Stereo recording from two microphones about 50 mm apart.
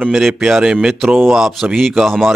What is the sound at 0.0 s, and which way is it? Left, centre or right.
A man's voice, centre.